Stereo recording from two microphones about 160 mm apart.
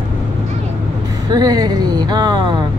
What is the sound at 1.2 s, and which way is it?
Vehicle, 25° right (ahead or behind).